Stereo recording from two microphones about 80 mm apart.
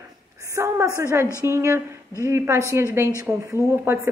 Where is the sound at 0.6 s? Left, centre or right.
Right.